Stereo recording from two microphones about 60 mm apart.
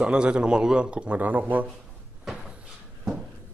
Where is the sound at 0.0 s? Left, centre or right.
Centre.